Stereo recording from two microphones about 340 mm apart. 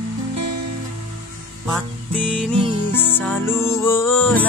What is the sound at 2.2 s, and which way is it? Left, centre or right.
Music, centre.